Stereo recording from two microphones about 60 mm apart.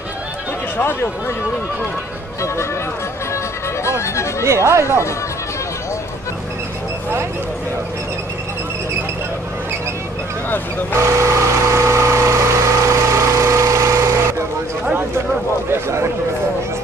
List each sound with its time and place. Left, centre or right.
4.0 s speech: left
4.5 s speech: right
11.0 s vehicle: right
15.7 s speech: right